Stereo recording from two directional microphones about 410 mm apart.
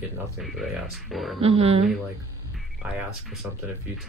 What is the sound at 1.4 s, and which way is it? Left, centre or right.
Speech, centre.